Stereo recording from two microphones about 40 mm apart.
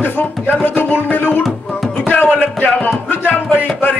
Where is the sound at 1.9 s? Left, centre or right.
Left.